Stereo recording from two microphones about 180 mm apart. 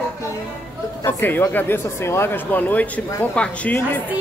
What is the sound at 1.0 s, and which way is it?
Speech, 10° left (ahead or behind).